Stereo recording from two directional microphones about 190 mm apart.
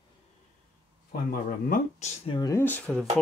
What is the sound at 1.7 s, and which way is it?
Speech, 35° left (ahead or behind).